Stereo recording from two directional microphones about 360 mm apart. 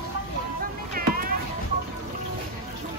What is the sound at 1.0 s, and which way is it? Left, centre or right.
Music, right.